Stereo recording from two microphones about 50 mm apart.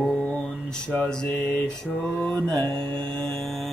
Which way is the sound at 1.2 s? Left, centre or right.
Left.